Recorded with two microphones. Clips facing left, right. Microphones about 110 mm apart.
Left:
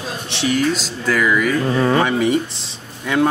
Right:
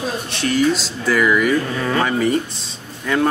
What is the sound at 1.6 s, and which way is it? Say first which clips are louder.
Speech: left 4 dB; 25° left (ahead or behind).